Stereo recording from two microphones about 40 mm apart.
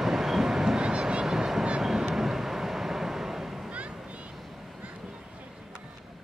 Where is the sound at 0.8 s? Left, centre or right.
Right.